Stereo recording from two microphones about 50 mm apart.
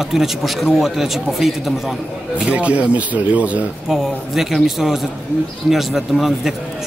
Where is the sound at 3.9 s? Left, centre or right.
Centre.